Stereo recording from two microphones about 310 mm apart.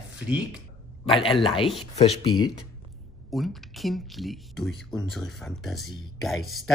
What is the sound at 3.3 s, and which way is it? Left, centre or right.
Speech, centre.